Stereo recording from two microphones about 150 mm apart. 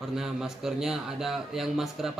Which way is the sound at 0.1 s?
5° right (ahead or behind).